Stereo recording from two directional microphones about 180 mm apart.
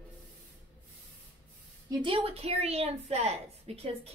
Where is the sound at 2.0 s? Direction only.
30° right (ahead or behind).